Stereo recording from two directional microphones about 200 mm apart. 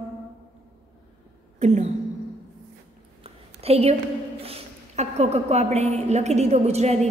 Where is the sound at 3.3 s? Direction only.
30° right (ahead or behind).